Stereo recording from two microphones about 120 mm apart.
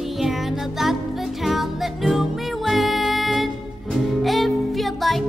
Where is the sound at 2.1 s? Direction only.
Centre (ahead or behind).